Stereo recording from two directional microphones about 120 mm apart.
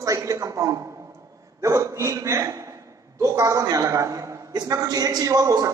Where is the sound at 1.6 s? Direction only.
25° right (ahead or behind).